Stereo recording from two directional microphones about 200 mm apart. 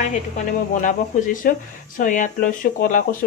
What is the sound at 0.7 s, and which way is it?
Speech, 40° left (ahead or behind).